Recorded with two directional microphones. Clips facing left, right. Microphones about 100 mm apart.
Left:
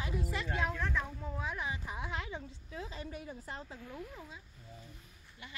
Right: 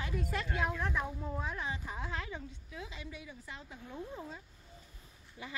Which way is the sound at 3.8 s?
25° right (ahead or behind).